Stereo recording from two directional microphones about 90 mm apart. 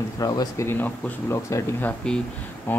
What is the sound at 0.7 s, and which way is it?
Speech, 20° left (ahead or behind).